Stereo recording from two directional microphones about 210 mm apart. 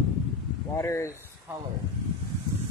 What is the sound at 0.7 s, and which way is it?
Speech, 15° left (ahead or behind).